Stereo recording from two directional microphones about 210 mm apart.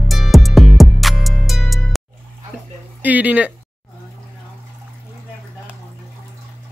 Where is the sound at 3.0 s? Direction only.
5° right (ahead or behind).